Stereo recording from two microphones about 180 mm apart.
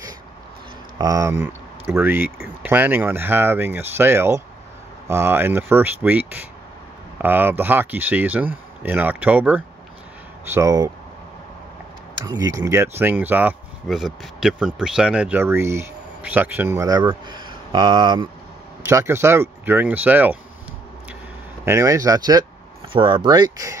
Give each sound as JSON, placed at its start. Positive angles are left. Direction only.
{"t": 0.9, "sound": "speech", "side_deg": -20}
{"t": 12.3, "sound": "speech", "side_deg": -20}
{"t": 21.6, "sound": "speech", "side_deg": -15}